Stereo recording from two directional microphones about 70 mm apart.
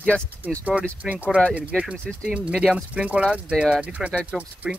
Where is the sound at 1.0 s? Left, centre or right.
Right.